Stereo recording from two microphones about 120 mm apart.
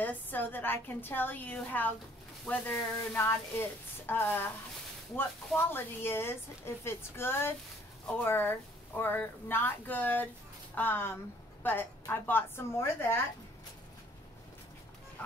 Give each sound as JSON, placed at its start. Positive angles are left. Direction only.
{"t": 0.0, "sound": "speech", "side_deg": 15}
{"t": 5.7, "sound": "speech", "side_deg": 20}
{"t": 15.2, "sound": "speech", "side_deg": 10}